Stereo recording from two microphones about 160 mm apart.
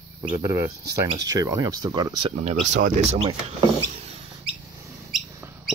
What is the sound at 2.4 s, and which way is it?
Speech, 50° right (ahead or behind).